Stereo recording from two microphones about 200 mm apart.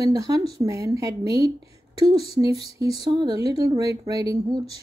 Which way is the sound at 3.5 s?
15° right (ahead or behind).